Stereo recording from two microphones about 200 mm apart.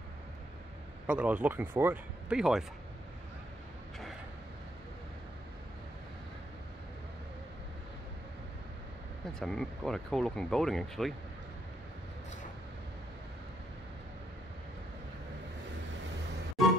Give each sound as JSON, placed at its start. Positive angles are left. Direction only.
{"t": 1.0, "sound": "speech", "side_deg": -5}
{"t": 9.4, "sound": "speech", "side_deg": 0}